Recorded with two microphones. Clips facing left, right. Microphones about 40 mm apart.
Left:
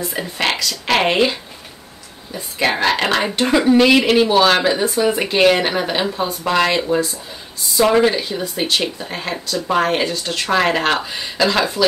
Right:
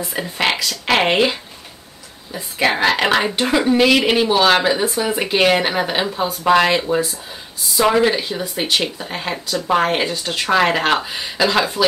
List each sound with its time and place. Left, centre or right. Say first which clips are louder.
0.0 s speech: right 1 dB; centre
2.6 s speech: right 1 dB; centre
8.1 s speech: even; centre